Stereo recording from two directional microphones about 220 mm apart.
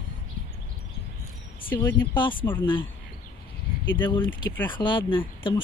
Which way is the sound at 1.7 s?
10° left (ahead or behind).